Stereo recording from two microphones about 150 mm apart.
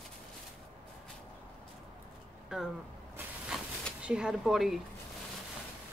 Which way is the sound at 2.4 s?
Centre (ahead or behind).